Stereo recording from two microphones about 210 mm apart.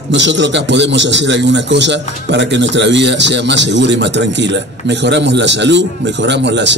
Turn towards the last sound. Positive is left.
turn(degrees=-55)  # may be behind; listen again after turning